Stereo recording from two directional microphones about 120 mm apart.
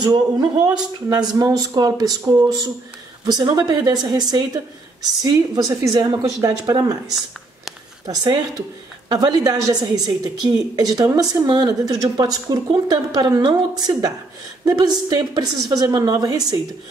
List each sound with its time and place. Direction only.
0.0 s a woman's voice: 35° right (ahead or behind)
8.1 s a woman's voice: 35° right (ahead or behind)